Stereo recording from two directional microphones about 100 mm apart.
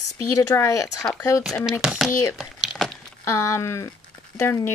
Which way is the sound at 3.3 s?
30° left (ahead or behind).